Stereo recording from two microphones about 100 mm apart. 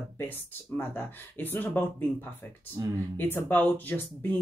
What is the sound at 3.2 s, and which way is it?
Speech, 20° left (ahead or behind).